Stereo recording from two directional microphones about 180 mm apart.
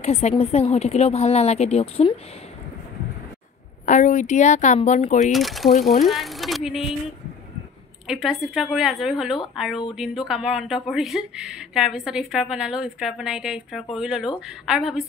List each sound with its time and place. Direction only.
0.0 s a woman's voice: 35° left (ahead or behind)
3.8 s a woman's voice: 45° left (ahead or behind)
5.3 s speech: centre (ahead or behind)
8.1 s speech: centre (ahead or behind)